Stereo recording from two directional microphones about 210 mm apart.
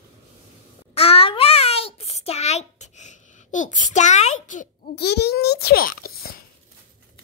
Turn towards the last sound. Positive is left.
turn(degrees=45)  # may be behind; listen again after turning